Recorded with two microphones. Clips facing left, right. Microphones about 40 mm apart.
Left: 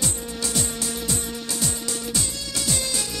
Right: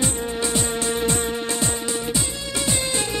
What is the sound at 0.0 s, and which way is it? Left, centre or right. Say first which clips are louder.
Music: right 5 dB; right.